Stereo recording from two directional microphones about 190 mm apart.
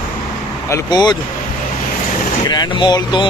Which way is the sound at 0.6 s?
20° left (ahead or behind).